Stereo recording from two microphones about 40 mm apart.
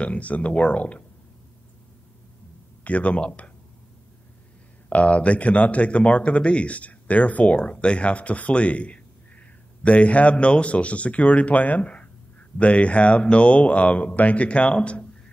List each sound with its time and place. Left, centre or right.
0.0 s speech: left
2.8 s speech: left
4.8 s speech: left